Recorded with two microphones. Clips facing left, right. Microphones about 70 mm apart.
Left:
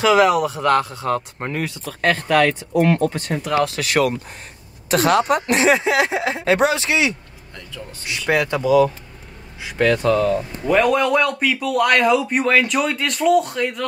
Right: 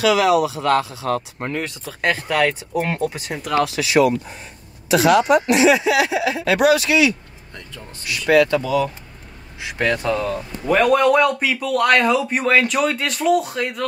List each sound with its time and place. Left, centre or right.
0.0 s speech: left
1.4 s a man's voice: centre
1.9 s speech: centre
3.6 s speech: left
9.6 s a man's voice: centre